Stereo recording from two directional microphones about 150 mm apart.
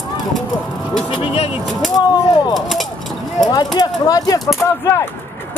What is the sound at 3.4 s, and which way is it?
Speech, 25° left (ahead or behind).